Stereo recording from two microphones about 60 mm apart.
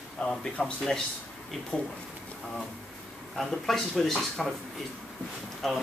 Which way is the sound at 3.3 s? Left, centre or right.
Centre.